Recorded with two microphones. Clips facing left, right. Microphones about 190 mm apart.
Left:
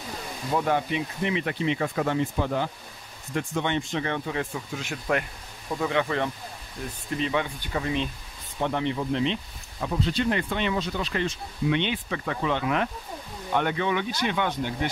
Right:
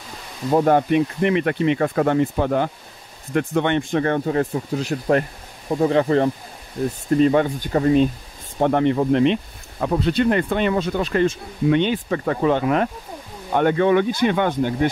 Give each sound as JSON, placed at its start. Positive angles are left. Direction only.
{"t": 0.5, "sound": "speech", "side_deg": -45}